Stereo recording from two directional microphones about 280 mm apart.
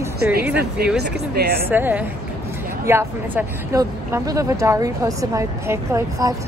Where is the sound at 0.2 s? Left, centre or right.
Right.